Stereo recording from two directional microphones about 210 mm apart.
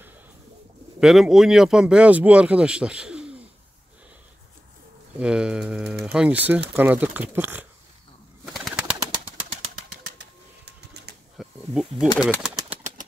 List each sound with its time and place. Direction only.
0.9 s speech: centre (ahead or behind)
5.2 s speech: 5° right (ahead or behind)
8.5 s bird: centre (ahead or behind)
10.6 s pigeon: 50° right (ahead or behind)
11.3 s snake: centre (ahead or behind)
12.1 s speech: 20° left (ahead or behind)
12.6 s a sound: 35° right (ahead or behind)